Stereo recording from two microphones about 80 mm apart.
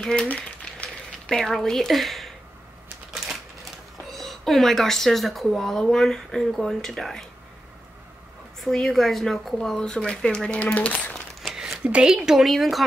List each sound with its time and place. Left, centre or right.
0.0 s speech: centre
0.3 s a sound: centre
1.3 s a woman's voice: centre
4.1 s a woman's voice: centre
8.5 s speech: centre
11.4 s a sound: centre
12.2 s a woman's voice: centre